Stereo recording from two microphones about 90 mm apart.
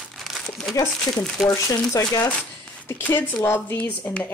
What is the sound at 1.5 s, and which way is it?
Speech, 35° left (ahead or behind).